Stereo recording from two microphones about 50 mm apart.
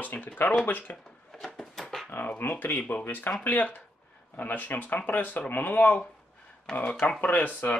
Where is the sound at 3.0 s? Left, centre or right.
Left.